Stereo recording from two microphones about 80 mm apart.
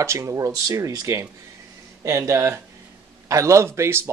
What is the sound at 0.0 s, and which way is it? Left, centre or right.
A man's voice, right.